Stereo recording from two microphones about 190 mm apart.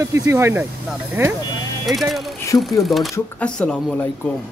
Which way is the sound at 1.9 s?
Centre (ahead or behind).